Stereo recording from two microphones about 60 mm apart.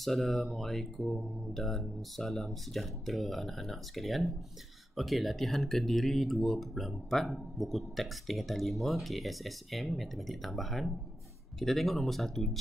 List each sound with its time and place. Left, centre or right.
0.0 s speech: centre